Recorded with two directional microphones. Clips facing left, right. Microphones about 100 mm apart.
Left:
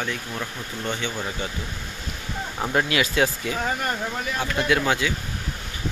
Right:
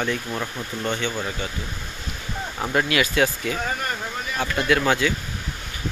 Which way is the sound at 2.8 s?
20° left (ahead or behind).